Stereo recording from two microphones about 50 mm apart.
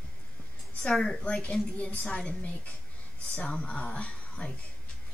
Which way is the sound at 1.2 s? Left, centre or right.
Left.